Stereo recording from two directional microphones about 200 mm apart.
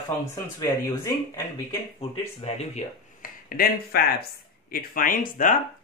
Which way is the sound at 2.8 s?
35° left (ahead or behind).